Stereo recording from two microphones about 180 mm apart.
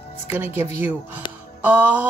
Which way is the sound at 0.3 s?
10° right (ahead or behind).